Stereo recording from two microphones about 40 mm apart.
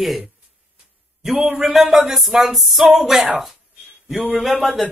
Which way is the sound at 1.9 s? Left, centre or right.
Centre.